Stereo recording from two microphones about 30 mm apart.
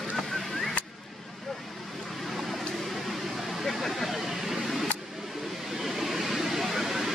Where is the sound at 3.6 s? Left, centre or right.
Centre.